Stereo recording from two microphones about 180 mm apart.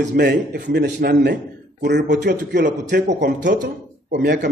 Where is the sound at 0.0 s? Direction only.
70° right (ahead or behind).